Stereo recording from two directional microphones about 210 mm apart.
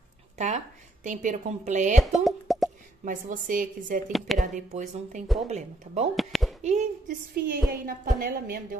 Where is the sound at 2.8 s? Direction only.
40° right (ahead or behind).